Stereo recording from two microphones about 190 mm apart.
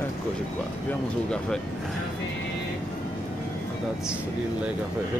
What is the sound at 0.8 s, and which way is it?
Speech, 5° left (ahead or behind).